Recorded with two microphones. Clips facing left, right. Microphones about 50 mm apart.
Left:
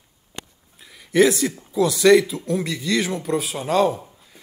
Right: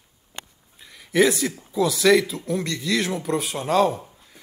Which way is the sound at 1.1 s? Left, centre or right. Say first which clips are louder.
Left 2 dB; centre.